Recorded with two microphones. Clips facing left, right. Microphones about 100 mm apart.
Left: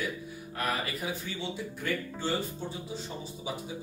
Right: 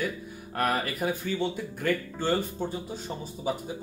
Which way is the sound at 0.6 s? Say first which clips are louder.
Right 5 dB; 50° right (ahead or behind).